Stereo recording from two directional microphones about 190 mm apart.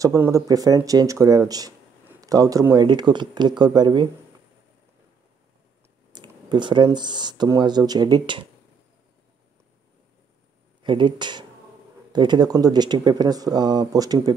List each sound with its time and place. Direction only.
0.0 s speech: 15° right (ahead or behind)
6.1 s speech: 25° right (ahead or behind)
10.8 s speech: 25° right (ahead or behind)